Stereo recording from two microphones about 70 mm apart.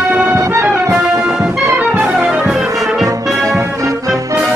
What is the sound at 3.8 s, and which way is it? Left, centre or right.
Music, right.